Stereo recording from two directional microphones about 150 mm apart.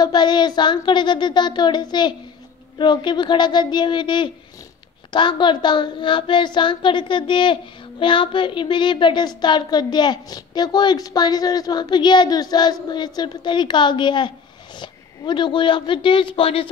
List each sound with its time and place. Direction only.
0.0 s a woman's voice: 30° left (ahead or behind)